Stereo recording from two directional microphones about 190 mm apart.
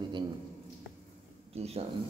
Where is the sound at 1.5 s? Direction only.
30° right (ahead or behind).